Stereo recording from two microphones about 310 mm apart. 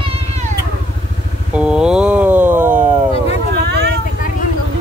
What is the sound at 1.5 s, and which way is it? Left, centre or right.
Speech, centre.